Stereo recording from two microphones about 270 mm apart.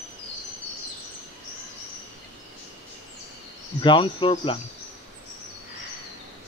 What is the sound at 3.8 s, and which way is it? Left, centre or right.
Cricket, centre.